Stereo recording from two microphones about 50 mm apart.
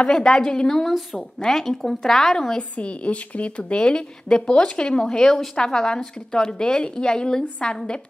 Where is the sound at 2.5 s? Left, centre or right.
Left.